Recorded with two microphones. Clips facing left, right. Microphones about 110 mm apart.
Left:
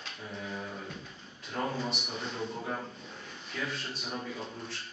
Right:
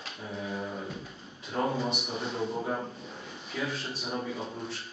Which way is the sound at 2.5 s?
20° right (ahead or behind).